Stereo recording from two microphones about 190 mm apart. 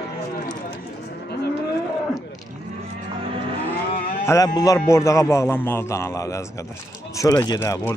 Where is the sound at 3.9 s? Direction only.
50° left (ahead or behind).